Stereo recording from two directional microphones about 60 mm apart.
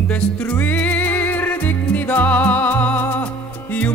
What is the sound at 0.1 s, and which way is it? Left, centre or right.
Music, left.